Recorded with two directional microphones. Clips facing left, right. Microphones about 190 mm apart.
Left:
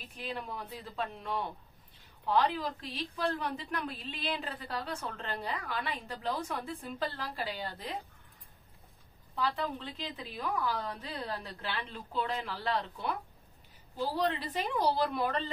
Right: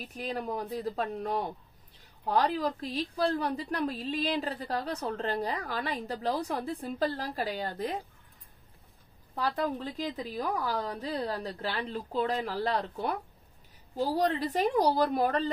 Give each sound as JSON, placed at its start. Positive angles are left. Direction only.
{"t": 0.1, "sound": "a woman's voice", "side_deg": -40}
{"t": 9.3, "sound": "a woman's voice", "side_deg": -45}